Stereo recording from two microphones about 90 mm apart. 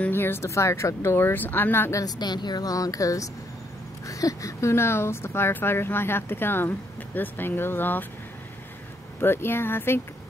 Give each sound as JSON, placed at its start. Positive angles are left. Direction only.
{"t": 0.1, "sound": "speech", "side_deg": 25}
{"t": 2.0, "sound": "speech", "side_deg": 50}
{"t": 9.2, "sound": "speech", "side_deg": 25}